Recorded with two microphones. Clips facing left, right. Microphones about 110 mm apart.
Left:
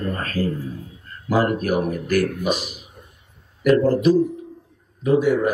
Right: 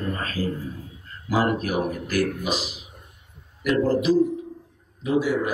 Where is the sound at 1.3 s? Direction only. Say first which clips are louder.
Left 3 dB; 50° left (ahead or behind).